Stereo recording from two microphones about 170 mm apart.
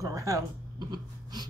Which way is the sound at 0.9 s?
25° right (ahead or behind).